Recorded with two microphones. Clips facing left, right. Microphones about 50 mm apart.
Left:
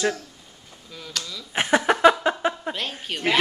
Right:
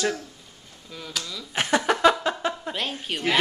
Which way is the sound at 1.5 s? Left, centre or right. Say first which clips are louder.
Left 2 dB; centre.